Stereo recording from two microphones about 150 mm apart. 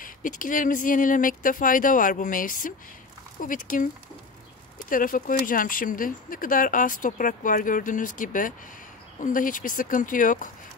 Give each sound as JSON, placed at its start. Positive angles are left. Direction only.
{"t": 0.0, "sound": "speech", "side_deg": 65}